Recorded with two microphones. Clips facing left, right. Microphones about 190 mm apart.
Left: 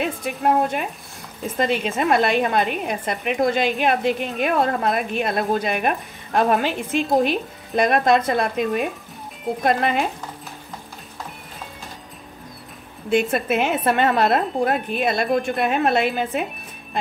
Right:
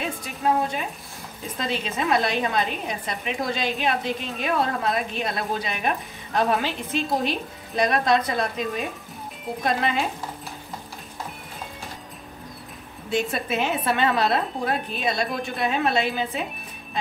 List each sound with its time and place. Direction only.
0.0 s a woman's voice: 60° left (ahead or behind)
13.1 s a woman's voice: 55° left (ahead or behind)